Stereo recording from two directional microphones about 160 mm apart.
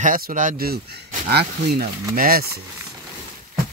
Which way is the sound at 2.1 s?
65° right (ahead or behind).